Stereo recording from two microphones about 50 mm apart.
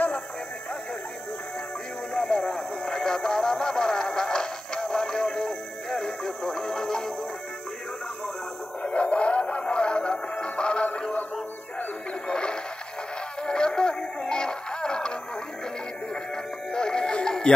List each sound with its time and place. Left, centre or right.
2.1 s music: centre
8.8 s music: left
12.3 s music: centre
16.7 s music: centre